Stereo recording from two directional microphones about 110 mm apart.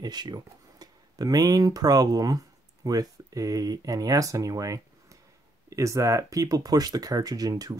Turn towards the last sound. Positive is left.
turn(degrees=-35)  # may be behind; listen again after turning